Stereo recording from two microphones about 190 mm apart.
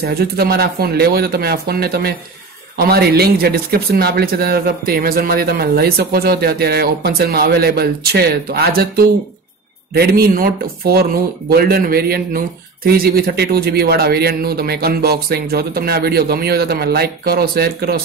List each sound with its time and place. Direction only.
0.0 s speech: 55° right (ahead or behind)